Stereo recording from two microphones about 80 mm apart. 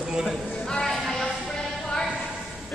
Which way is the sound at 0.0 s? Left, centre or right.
Centre.